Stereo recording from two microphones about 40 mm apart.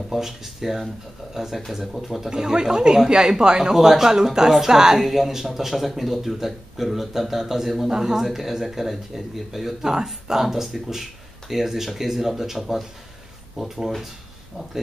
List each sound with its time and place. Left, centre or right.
0.1 s speech: centre
3.7 s speech: centre